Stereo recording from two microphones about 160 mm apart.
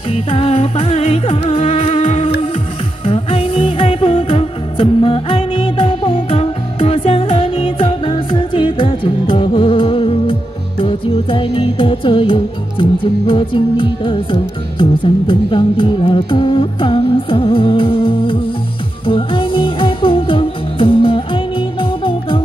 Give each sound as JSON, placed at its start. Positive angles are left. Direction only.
{"t": 0.1, "sound": "music", "side_deg": 40}